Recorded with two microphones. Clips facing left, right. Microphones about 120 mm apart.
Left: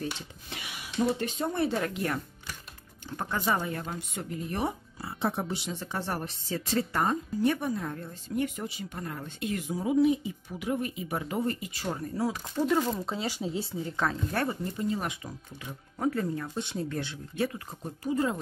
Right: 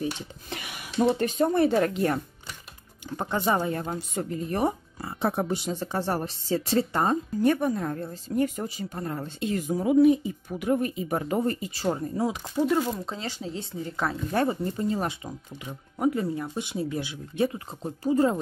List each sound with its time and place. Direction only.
1.2 s speech: 50° right (ahead or behind)
1.8 s speech: 35° right (ahead or behind)
3.5 s speech: 35° right (ahead or behind)
7.4 s speech: 50° right (ahead or behind)
7.8 s speech: 35° right (ahead or behind)
9.7 s speech: 55° right (ahead or behind); by 12.4 s 20° right (ahead or behind)
12.5 s speech: 5° right (ahead or behind)
14.3 s speech: 25° right (ahead or behind)
15.2 s speech: 15° right (ahead or behind)
17.5 s speech: 30° right (ahead or behind)